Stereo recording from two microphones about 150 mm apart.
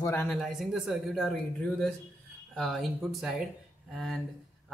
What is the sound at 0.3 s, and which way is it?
Speech, centre (ahead or behind).